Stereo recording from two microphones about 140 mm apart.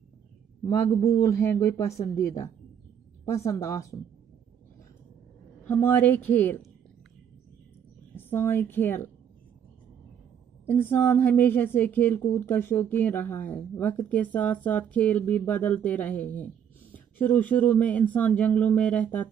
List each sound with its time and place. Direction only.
0.8 s speech: 25° left (ahead or behind)
5.7 s a woman's voice: 15° left (ahead or behind)
8.2 s a woman's voice: 15° left (ahead or behind)
10.7 s a woman's voice: 15° left (ahead or behind)